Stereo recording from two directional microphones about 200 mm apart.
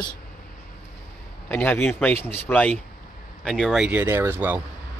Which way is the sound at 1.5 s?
10° left (ahead or behind).